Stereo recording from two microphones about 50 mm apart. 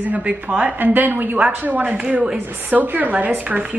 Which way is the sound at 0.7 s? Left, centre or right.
Right.